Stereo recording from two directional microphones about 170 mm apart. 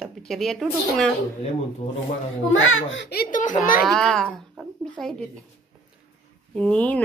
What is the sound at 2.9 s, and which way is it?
Speech, 75° left (ahead or behind).